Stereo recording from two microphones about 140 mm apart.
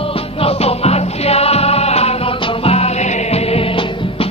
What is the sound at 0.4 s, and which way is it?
Music, 45° left (ahead or behind).